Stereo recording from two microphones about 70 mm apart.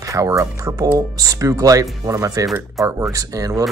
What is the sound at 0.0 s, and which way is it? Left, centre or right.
Speech, right.